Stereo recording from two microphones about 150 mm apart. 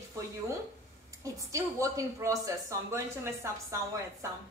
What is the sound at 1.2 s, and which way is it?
A woman's voice, 20° right (ahead or behind).